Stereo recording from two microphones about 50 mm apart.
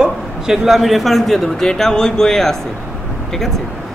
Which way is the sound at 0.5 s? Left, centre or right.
Centre.